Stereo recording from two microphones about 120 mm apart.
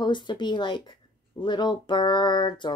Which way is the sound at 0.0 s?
40° left (ahead or behind).